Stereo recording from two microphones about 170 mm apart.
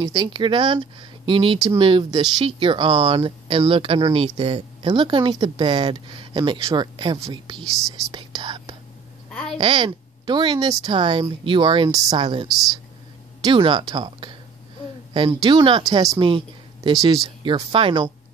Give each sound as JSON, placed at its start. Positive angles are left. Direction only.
{"t": 0.0, "sound": "speech", "side_deg": -25}
{"t": 12.4, "sound": "speech", "side_deg": 0}
{"t": 13.4, "sound": "speech", "side_deg": -30}